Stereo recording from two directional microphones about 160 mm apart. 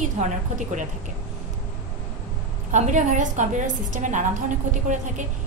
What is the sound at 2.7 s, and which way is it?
A woman's voice, 50° right (ahead or behind).